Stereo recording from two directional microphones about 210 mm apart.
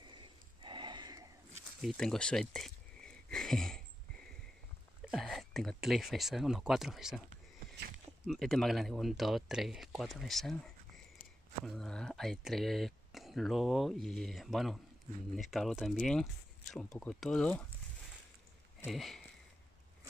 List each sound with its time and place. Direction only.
0.0 s a sound: 20° right (ahead or behind)
1.8 s a sound: centre (ahead or behind)
5.0 s speech: centre (ahead or behind)
8.3 s speech: centre (ahead or behind)
11.6 s speech: centre (ahead or behind)
18.9 s speech: centre (ahead or behind)